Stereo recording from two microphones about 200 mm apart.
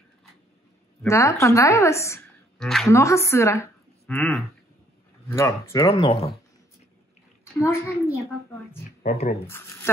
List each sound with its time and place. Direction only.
1.0 s a woman's voice: 15° left (ahead or behind)
2.6 s a woman's voice: centre (ahead or behind)
2.9 s a woman's voice: 15° left (ahead or behind)
4.1 s a woman's voice: 5° left (ahead or behind)
5.3 s a woman's voice: 15° left (ahead or behind)
7.5 s a woman's voice: 15° left (ahead or behind)
9.0 s speech: 30° left (ahead or behind)